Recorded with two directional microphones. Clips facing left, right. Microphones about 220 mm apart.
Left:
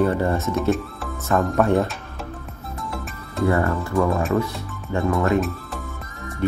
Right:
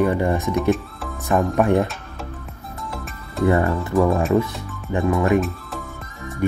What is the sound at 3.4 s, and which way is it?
Speech, 20° right (ahead or behind).